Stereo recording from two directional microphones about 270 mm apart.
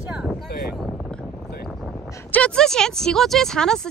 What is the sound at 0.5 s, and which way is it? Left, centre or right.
Speech, left.